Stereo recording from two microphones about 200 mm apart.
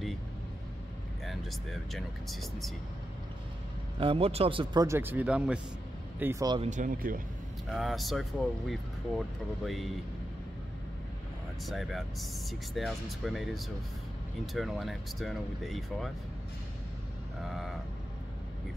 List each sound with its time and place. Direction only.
1.2 s speech: centre (ahead or behind)
4.0 s speech: 25° right (ahead or behind)
4.8 s speech: 10° right (ahead or behind)
6.4 s speech: 20° right (ahead or behind)
6.7 s speech: 40° right (ahead or behind)
7.7 s speech: centre (ahead or behind)
11.6 s speech: centre (ahead or behind)
17.4 s vehicle: centre (ahead or behind)